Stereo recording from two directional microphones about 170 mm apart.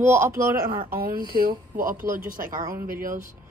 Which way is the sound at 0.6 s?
55° right (ahead or behind).